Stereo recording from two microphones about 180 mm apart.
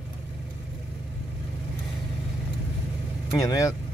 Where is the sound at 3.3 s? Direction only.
15° left (ahead or behind).